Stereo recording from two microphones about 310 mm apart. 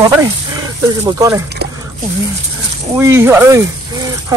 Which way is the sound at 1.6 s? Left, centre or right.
Right.